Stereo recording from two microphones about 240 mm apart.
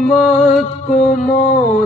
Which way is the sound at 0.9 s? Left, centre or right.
Left.